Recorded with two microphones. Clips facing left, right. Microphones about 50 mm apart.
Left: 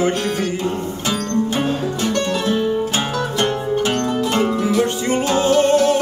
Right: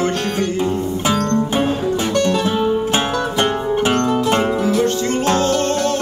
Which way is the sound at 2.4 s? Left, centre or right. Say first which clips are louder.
Right 1 dB; centre.